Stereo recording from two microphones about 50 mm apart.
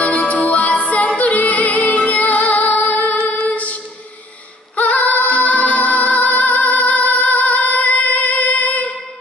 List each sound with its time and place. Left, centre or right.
0.0 s music: left